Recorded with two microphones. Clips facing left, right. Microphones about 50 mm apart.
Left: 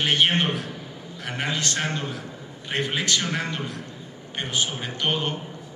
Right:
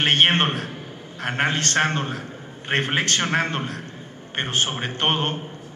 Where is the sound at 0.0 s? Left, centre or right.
Right.